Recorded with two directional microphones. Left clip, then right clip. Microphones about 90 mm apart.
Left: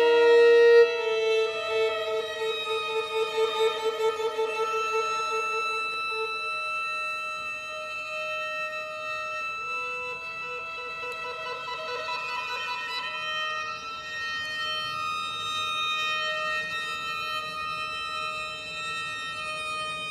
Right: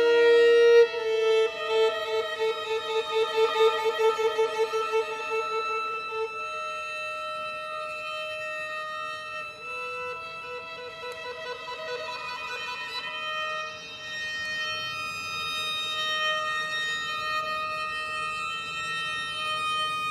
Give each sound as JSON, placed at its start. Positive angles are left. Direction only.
{"t": 0.0, "sound": "wind instrument", "side_deg": -15}
{"t": 1.3, "sound": "music", "side_deg": -30}
{"t": 15.5, "sound": "music", "side_deg": -15}
{"t": 19.6, "sound": "siren", "side_deg": -25}